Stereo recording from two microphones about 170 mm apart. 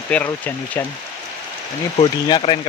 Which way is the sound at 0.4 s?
10° left (ahead or behind).